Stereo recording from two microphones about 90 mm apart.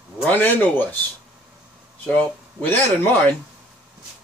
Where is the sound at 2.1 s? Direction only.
15° left (ahead or behind).